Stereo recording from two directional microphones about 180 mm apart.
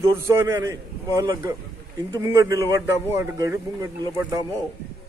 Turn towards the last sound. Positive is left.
turn(degrees=-20)  # may be behind; listen again after turning